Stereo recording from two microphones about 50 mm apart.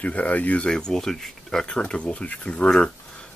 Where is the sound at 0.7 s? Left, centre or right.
Centre.